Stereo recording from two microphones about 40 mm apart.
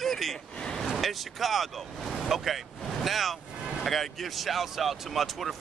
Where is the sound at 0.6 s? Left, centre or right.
Centre.